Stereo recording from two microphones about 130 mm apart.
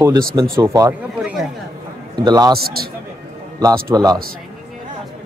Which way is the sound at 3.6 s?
25° right (ahead or behind).